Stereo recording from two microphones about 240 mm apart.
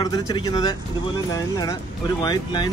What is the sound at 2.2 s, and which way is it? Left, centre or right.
Speech, centre.